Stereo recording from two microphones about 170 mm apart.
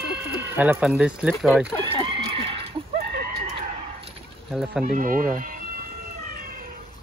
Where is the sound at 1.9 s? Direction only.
30° right (ahead or behind).